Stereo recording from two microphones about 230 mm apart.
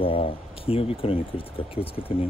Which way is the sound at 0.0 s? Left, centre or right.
Left.